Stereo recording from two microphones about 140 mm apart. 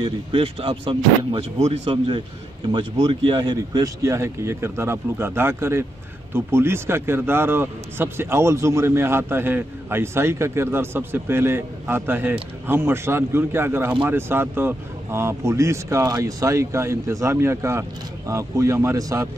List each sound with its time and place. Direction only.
0.0 s a man's voice: 40° right (ahead or behind); by 19.2 s 25° right (ahead or behind)